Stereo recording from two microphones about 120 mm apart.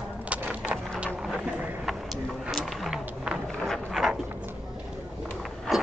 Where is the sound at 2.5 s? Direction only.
Centre (ahead or behind).